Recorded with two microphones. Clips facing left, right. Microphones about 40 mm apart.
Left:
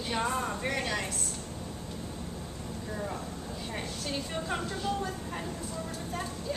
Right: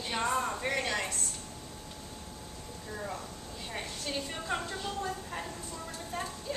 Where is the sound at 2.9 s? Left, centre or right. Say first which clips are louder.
Left 2 dB; centre.